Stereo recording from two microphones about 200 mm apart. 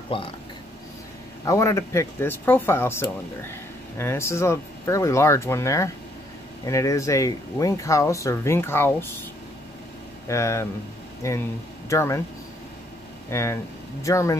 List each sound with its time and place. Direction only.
0.1 s speech: 25° left (ahead or behind)
1.4 s speech: 15° left (ahead or behind)
10.2 s speech: 15° left (ahead or behind)
13.3 s speech: 15° left (ahead or behind)